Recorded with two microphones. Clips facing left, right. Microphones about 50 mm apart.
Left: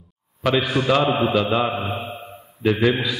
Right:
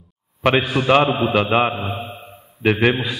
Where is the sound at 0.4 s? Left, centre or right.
Right.